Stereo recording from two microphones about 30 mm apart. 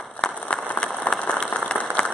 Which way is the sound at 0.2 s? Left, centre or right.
Left.